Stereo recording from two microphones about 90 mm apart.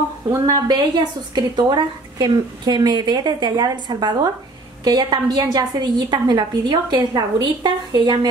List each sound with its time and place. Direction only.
0.5 s a woman's voice: 50° right (ahead or behind)